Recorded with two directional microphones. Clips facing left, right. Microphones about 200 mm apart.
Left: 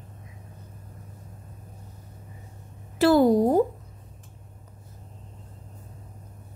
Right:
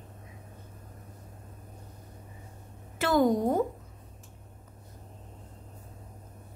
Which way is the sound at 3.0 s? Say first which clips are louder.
Left 6 dB; 35° left (ahead or behind).